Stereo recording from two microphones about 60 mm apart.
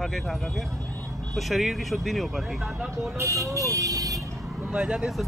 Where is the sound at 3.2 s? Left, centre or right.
Right.